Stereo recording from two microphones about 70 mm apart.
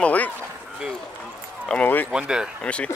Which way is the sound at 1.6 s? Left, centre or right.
Left.